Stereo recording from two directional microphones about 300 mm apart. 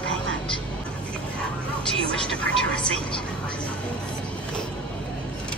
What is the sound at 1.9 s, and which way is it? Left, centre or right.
Speech, centre.